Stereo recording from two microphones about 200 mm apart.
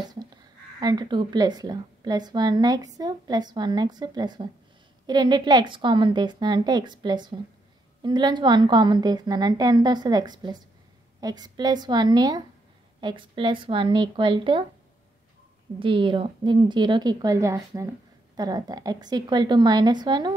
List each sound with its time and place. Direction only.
0.1 s a woman's voice: 20° right (ahead or behind)
15.8 s a woman's voice: 25° right (ahead or behind)